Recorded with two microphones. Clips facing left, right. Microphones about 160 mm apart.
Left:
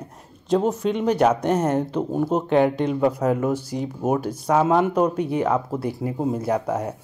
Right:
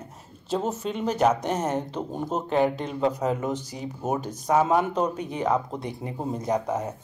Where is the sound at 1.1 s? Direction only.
10° left (ahead or behind).